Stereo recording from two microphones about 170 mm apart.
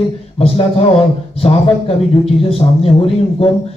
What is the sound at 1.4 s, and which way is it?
Speech, 35° left (ahead or behind).